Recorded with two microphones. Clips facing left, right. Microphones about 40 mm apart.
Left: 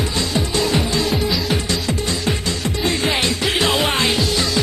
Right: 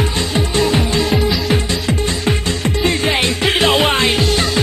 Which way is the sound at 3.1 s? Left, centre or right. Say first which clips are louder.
Right 3 dB; right.